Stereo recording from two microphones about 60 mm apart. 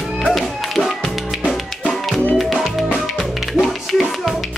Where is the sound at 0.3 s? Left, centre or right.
Centre.